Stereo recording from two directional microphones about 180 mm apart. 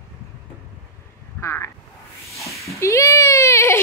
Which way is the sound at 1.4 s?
15° left (ahead or behind).